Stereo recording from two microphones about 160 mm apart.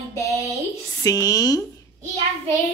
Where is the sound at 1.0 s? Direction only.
25° left (ahead or behind).